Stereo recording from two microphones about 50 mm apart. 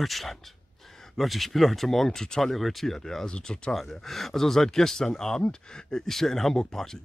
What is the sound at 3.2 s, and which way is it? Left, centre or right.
Speech, centre.